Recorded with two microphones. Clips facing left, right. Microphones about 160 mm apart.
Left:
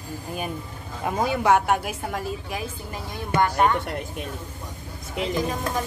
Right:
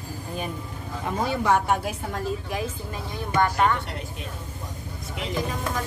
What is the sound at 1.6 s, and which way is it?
Speech, 10° left (ahead or behind).